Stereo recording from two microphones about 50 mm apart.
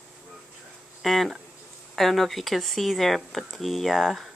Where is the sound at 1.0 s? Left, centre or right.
Centre.